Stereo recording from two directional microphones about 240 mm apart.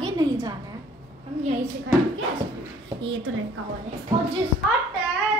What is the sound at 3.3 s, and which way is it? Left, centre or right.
Speech, right.